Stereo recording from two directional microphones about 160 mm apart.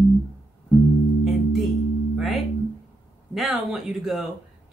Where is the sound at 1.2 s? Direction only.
Centre (ahead or behind).